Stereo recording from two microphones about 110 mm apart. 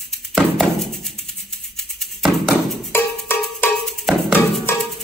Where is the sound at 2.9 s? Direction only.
20° left (ahead or behind).